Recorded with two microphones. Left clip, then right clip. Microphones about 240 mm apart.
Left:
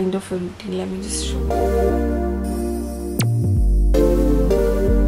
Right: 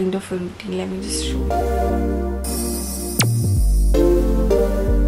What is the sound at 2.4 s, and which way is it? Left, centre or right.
Music, centre.